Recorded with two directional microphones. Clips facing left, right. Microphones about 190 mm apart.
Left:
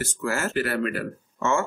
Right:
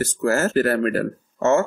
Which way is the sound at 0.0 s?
40° right (ahead or behind).